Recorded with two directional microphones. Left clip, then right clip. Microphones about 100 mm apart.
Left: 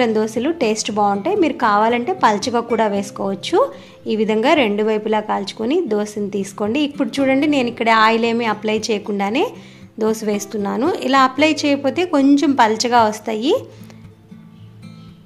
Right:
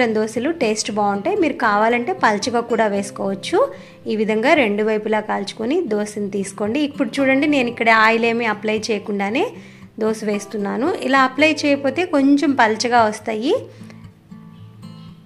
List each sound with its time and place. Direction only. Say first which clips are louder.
0.0 s a woman's voice: left 1 dB; 15° left (ahead or behind)